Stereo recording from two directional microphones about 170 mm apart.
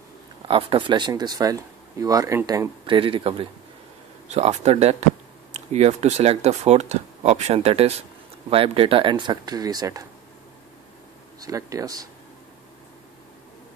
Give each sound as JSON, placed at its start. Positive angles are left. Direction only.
{"t": 0.5, "sound": "speech", "side_deg": -30}
{"t": 3.0, "sound": "speech", "side_deg": -30}
{"t": 11.4, "sound": "speech", "side_deg": -20}